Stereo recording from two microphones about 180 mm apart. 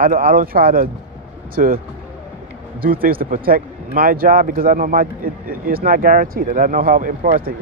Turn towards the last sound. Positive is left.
turn(degrees=-55)  # may be behind; listen again after turning